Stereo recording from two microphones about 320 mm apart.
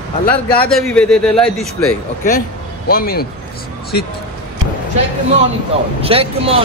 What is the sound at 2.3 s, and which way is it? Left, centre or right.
A man's voice, left.